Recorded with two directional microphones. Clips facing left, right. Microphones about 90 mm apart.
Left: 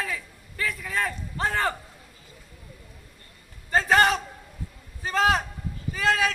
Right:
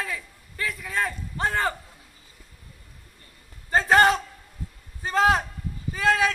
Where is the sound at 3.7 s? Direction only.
30° right (ahead or behind).